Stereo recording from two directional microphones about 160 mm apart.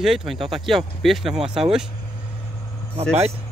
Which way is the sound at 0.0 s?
Centre (ahead or behind).